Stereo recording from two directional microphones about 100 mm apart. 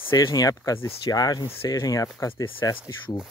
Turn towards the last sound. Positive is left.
turn(degrees=40)  # may be behind; listen again after turning